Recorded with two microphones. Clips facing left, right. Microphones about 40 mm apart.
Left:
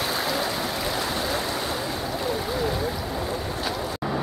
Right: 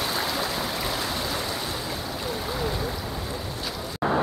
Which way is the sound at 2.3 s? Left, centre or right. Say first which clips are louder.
Left 2 dB; centre.